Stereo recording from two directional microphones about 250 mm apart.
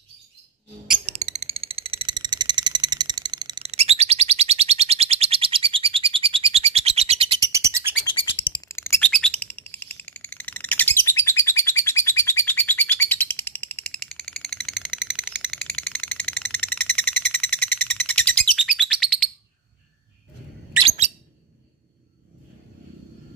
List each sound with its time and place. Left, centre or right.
1.0 s a sound: right
7.5 s bird: centre
8.0 s bird: centre
20.8 s bird: right